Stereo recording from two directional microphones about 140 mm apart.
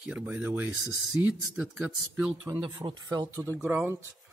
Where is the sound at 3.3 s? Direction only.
20° right (ahead or behind).